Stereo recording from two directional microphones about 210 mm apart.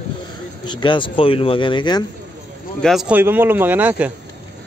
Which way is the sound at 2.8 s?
Centre (ahead or behind).